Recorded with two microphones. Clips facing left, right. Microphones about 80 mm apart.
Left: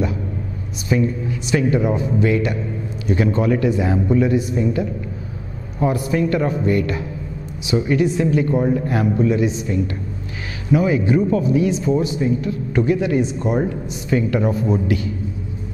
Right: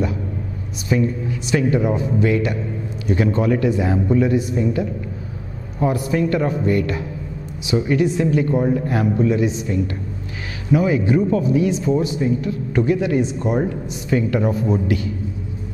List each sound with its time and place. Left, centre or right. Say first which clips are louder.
1.5 s speech: even; centre